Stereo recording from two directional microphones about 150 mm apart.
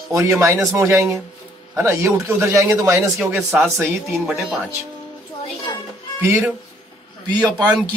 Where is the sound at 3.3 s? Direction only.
Centre (ahead or behind).